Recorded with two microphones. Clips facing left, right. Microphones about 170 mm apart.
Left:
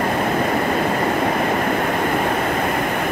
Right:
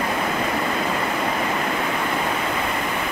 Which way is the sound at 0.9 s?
50° left (ahead or behind).